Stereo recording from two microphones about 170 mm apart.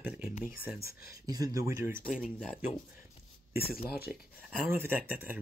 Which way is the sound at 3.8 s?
65° left (ahead or behind).